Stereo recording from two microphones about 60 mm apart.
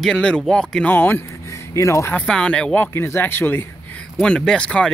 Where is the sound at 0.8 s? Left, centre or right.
Left.